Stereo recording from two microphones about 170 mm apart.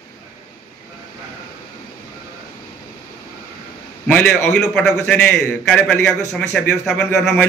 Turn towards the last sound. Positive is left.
turn(degrees=5)  # may be behind; listen again after turning